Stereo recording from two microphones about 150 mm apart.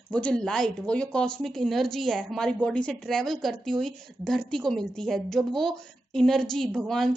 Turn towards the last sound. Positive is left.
turn(degrees=0)  # may be behind; listen again after turning